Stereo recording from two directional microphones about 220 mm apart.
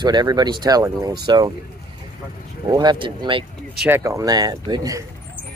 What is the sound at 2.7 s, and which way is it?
Speech, 20° right (ahead or behind).